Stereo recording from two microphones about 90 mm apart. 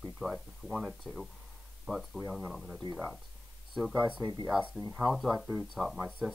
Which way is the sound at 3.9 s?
15° right (ahead or behind).